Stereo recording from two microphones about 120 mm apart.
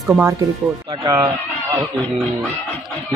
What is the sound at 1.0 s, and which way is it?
Speech, 35° right (ahead or behind).